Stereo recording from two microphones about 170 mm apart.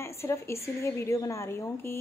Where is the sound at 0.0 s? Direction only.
15° left (ahead or behind).